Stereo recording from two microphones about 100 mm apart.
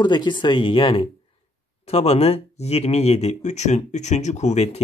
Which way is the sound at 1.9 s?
90° left.